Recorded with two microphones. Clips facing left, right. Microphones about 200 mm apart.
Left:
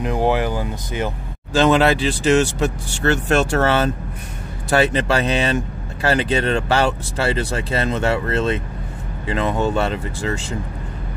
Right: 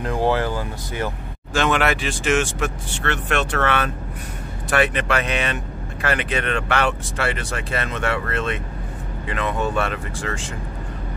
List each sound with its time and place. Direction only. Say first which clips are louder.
0.0 s speech: left 2 dB; 15° left (ahead or behind)
1.5 s speech: left 5 dB; 30° left (ahead or behind)